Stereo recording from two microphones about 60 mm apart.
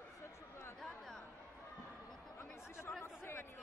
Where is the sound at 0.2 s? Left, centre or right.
Left.